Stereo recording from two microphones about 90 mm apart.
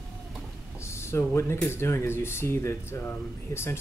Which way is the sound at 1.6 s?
25° left (ahead or behind).